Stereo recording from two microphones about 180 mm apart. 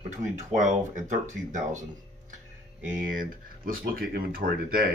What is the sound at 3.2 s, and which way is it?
Speech, 50° right (ahead or behind).